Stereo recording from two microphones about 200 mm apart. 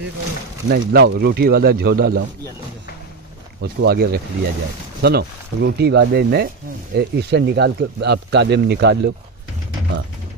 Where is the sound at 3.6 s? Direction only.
55° right (ahead or behind).